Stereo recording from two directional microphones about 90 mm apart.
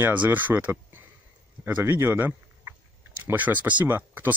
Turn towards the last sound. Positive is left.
turn(degrees=-25)  # may be behind; listen again after turning